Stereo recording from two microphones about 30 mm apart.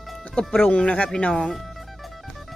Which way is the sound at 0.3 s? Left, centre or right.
Centre.